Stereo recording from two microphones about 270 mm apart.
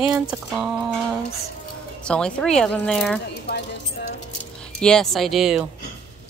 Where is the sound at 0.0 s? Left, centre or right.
Centre.